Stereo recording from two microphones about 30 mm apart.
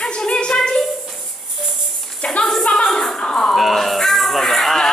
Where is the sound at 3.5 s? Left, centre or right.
Centre.